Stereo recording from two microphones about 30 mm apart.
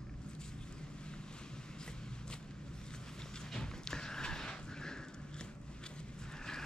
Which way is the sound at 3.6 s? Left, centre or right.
Left.